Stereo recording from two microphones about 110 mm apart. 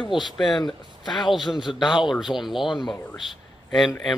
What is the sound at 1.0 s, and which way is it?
Speech, 40° left (ahead or behind).